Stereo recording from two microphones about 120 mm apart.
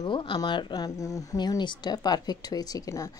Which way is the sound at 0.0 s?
40° left (ahead or behind).